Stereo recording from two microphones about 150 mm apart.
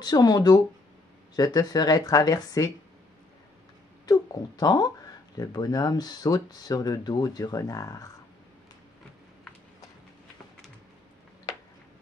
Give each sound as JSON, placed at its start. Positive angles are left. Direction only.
{"t": 0.0, "sound": "speech", "side_deg": 25}
{"t": 4.0, "sound": "a sound", "side_deg": 25}
{"t": 5.4, "sound": "speech", "side_deg": 25}